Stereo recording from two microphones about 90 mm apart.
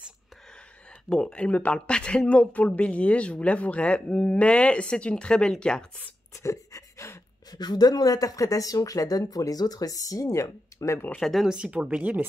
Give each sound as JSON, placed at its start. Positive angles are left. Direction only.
{"t": 1.0, "sound": "speech", "side_deg": 10}
{"t": 6.3, "sound": "gasp", "side_deg": 35}
{"t": 7.5, "sound": "speech", "side_deg": 50}
{"t": 11.1, "sound": "speech", "side_deg": 5}
{"t": 11.4, "sound": "speech", "side_deg": -10}